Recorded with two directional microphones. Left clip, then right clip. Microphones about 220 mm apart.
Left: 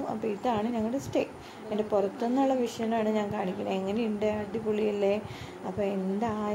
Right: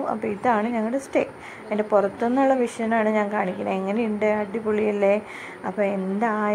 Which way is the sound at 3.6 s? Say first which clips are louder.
Right 6 dB; 45° right (ahead or behind).